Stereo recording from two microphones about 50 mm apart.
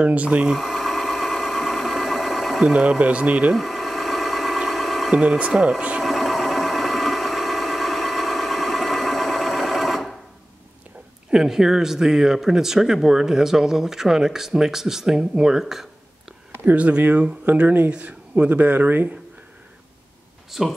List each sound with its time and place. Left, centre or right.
0.0 s speech: right
0.5 s a sound: centre
2.6 s speech: centre
3.5 s engine: centre
5.1 s speech: right
6.0 s a sound: centre
11.2 s speech: centre
16.6 s speech: right
20.5 s speech: centre